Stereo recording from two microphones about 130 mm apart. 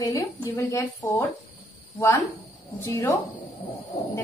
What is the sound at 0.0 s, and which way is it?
Speech, 25° left (ahead or behind).